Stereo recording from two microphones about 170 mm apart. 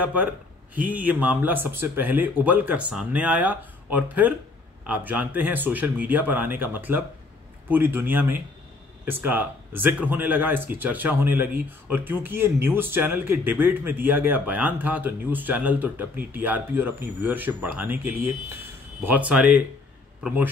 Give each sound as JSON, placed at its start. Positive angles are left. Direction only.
{"t": 0.0, "sound": "speech", "side_deg": -10}